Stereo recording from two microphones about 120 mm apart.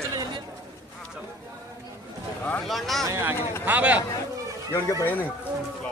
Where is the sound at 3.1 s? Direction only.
20° right (ahead or behind).